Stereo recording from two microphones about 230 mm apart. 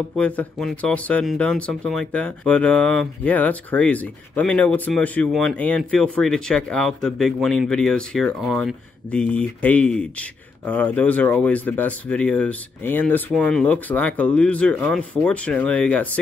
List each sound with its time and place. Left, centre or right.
0.1 s speech: centre